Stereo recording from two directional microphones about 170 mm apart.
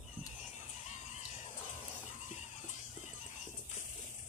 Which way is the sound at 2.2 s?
45° left (ahead or behind).